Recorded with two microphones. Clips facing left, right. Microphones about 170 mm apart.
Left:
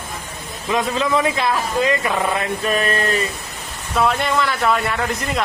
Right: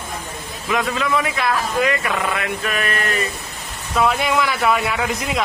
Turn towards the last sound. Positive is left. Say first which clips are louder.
# even
turn(degrees=-5)  # may be behind; listen again after turning